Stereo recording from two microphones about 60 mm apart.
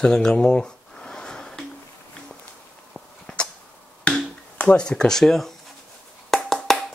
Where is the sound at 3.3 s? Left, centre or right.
Centre.